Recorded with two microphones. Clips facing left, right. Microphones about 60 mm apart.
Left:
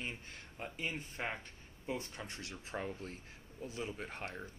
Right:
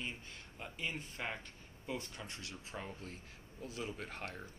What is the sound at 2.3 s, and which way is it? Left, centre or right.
Speech, left.